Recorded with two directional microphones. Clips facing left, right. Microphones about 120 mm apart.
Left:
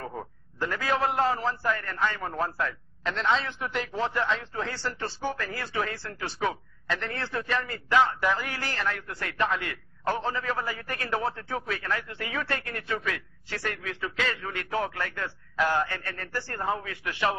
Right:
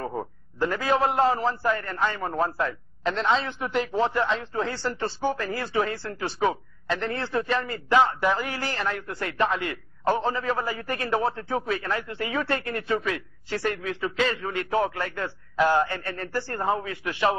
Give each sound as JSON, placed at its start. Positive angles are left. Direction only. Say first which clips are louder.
{"t": 0.0, "sound": "a man's voice", "louder": "right 6 dB", "side_deg": -25}